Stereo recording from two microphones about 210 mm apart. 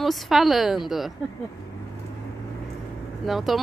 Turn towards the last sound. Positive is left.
turn(degrees=0)  # may be behind; listen again after turning